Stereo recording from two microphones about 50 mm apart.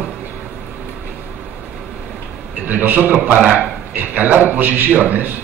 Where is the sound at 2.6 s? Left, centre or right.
Right.